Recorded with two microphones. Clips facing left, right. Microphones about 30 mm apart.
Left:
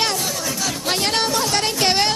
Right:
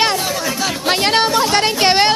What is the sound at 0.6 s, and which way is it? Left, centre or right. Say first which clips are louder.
A man's voice: right 5 dB; right.